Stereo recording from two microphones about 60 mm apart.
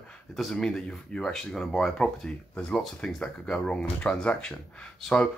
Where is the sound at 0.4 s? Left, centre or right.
Centre.